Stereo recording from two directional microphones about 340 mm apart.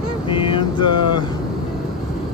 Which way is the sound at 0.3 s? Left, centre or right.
Centre.